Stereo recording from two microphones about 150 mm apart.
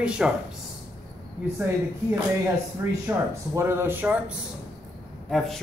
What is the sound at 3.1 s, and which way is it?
Speech, 15° right (ahead or behind).